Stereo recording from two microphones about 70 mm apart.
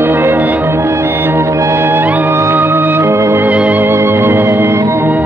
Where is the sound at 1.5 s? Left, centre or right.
Right.